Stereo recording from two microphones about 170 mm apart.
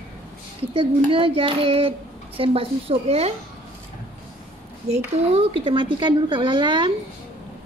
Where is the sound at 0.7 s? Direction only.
30° right (ahead or behind).